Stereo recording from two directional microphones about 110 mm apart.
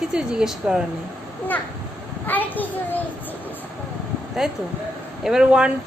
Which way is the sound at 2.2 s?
15° left (ahead or behind).